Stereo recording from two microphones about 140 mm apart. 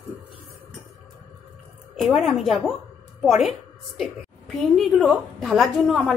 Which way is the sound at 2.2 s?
Centre (ahead or behind).